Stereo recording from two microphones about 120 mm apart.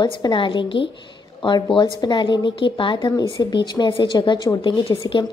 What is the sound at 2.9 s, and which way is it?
A woman's voice, 30° left (ahead or behind).